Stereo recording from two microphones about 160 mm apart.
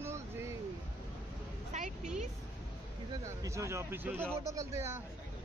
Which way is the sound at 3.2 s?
20° right (ahead or behind).